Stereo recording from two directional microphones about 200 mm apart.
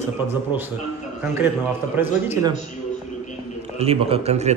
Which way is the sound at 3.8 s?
30° right (ahead or behind).